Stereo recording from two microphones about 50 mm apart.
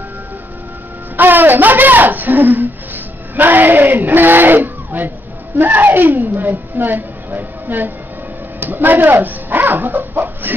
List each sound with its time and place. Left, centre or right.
1.1 s a sound: right
3.4 s speech: right
6.2 s music: right
8.5 s speech: right